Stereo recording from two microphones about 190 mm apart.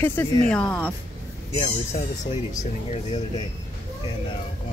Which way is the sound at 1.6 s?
35° left (ahead or behind).